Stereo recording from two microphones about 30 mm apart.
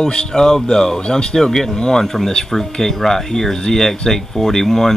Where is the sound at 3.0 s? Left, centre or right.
Centre.